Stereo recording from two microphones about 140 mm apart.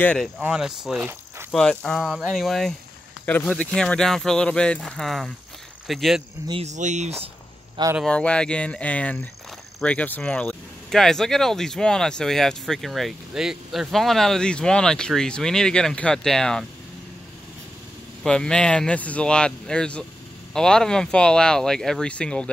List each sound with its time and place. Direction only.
0.0 s speech: 10° left (ahead or behind)
0.4 s speech: 5° right (ahead or behind)
6.6 s speech: 55° right (ahead or behind)
8.0 s speech: 5° left (ahead or behind)
18.2 s speech: 5° left (ahead or behind)